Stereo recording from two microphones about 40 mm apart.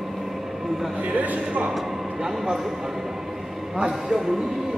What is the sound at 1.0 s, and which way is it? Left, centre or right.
Speech, right.